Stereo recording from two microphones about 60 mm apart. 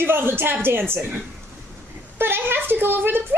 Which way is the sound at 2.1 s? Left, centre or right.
Right.